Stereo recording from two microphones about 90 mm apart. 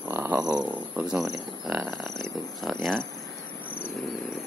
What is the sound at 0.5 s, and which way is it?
Speech, 10° right (ahead or behind).